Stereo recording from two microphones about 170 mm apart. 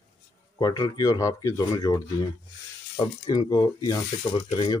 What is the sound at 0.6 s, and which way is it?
Speech, 20° left (ahead or behind).